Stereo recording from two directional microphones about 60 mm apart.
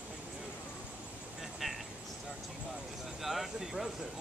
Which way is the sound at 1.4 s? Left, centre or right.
Centre.